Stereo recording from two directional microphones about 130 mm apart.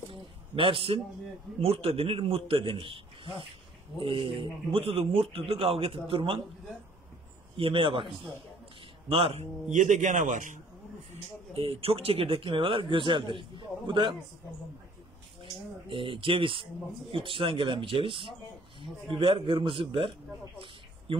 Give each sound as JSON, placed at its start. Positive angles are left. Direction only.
{"t": 0.6, "sound": "a man's voice", "side_deg": -45}
{"t": 7.5, "sound": "a man's voice", "side_deg": -45}
{"t": 9.1, "sound": "a man's voice", "side_deg": -50}
{"t": 11.5, "sound": "speech", "side_deg": -45}
{"t": 15.9, "sound": "speech", "side_deg": -40}
{"t": 21.1, "sound": "speech", "side_deg": -40}